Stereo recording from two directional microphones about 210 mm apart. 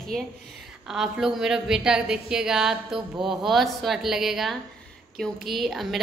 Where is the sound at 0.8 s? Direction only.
Centre (ahead or behind).